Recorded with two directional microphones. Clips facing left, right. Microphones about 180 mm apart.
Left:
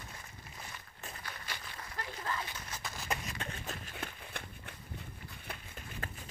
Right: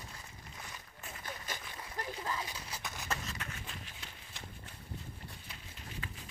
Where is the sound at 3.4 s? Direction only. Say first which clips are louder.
Left 4 dB; 40° left (ahead or behind).